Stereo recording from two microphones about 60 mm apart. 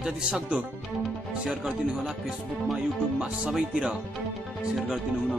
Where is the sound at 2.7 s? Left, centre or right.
Centre.